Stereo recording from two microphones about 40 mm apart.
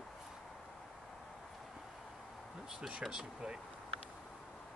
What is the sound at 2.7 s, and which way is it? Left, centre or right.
Speech, right.